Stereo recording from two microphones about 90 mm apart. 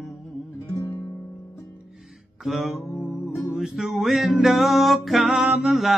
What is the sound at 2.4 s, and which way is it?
Music, 5° right (ahead or behind).